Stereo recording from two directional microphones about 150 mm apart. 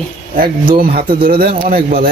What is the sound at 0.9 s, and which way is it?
Speech, 80° right.